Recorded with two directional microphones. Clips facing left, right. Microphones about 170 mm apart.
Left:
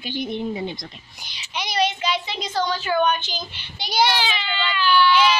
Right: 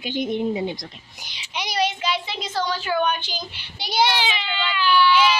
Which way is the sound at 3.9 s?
20° right (ahead or behind).